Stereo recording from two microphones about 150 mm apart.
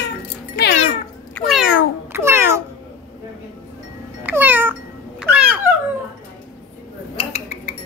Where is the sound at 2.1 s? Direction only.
15° right (ahead or behind).